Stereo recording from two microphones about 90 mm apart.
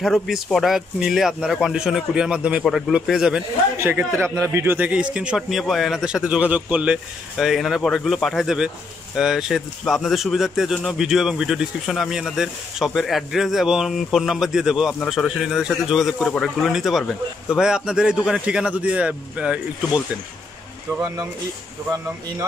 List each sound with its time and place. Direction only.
0.0 s a man's voice: centre (ahead or behind)
3.7 s a man's voice: 25° right (ahead or behind)
4.7 s a man's voice: 15° right (ahead or behind)
7.3 s a man's voice: 5° right (ahead or behind)